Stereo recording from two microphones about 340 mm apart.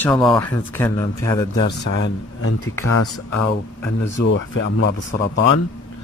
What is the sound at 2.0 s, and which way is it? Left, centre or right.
Speech, left.